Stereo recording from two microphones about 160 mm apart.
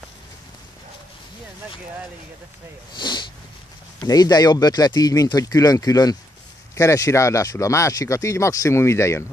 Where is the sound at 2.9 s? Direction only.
30° left (ahead or behind).